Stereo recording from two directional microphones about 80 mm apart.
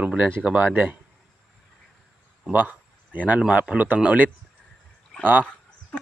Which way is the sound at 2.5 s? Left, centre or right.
Right.